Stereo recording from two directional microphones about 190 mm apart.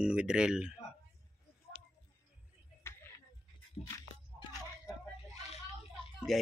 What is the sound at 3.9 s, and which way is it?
Biting, 15° left (ahead or behind).